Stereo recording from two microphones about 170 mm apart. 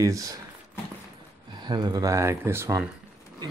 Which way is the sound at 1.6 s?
25° right (ahead or behind).